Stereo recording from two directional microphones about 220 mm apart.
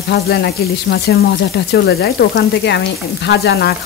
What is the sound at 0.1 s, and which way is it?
Frying, 50° left (ahead or behind).